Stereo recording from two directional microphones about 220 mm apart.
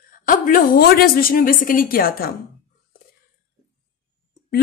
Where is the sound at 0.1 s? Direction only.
40° left (ahead or behind).